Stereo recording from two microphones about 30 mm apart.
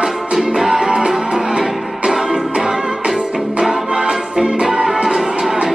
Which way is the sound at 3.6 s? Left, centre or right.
Right.